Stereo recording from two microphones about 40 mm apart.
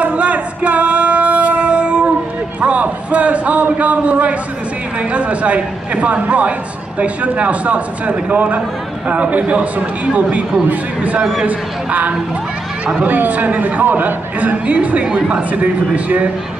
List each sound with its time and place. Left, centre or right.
0.0 s music: right
2.6 s a sound: right
5.1 s a man's voice: right
11.4 s a man's voice: right